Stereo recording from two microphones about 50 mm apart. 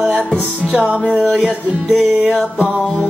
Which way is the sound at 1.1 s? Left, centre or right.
Centre.